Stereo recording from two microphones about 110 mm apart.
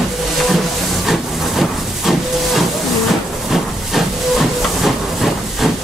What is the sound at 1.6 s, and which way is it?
Hiss, centre (ahead or behind).